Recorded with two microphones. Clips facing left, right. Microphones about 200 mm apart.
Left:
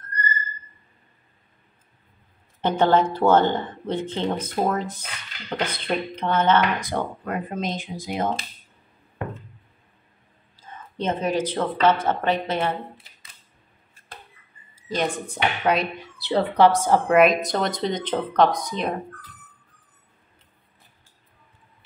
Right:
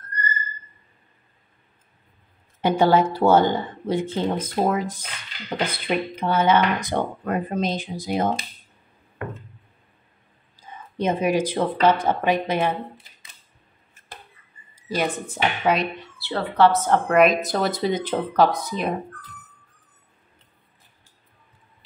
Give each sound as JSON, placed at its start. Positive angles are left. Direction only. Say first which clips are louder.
{"t": 2.6, "sound": "speech", "louder": "right 1 dB", "side_deg": -10}
{"t": 7.2, "sound": "speech", "louder": "right 4 dB", "side_deg": -35}
{"t": 10.5, "sound": "speech", "louder": "right 1 dB", "side_deg": -15}
{"t": 14.8, "sound": "speech", "louder": "right 1 dB", "side_deg": -10}
{"t": 16.0, "sound": "speech", "louder": "left 5 dB", "side_deg": 15}
{"t": 17.1, "sound": "speech", "louder": "even", "side_deg": 0}